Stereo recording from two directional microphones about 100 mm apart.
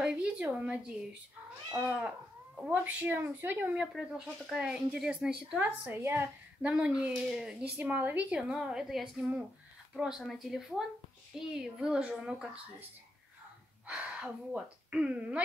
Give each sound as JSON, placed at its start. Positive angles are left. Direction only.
{"t": 0.0, "sound": "a sound", "side_deg": -10}
{"t": 1.9, "sound": "a woman's voice", "side_deg": -10}
{"t": 4.5, "sound": "a woman's voice", "side_deg": -5}
{"t": 5.7, "sound": "a woman's voice", "side_deg": -20}
{"t": 6.7, "sound": "a woman's voice", "side_deg": -10}
{"t": 13.8, "sound": "speech", "side_deg": -15}